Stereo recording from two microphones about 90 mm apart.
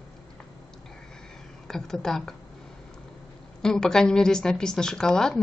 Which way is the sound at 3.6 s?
5° left (ahead or behind).